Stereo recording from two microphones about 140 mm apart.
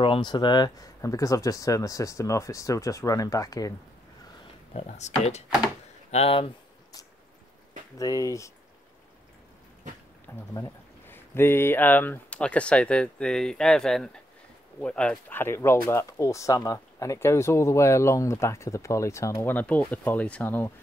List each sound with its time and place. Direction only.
0.0 s speech: 35° left (ahead or behind)
4.7 s speech: 55° left (ahead or behind)
6.1 s speech: 40° left (ahead or behind)
8.0 s speech: 25° left (ahead or behind)
10.3 s speech: 15° left (ahead or behind)
19.5 s speech: 10° left (ahead or behind)